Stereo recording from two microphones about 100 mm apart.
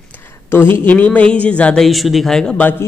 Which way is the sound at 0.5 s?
20° left (ahead or behind).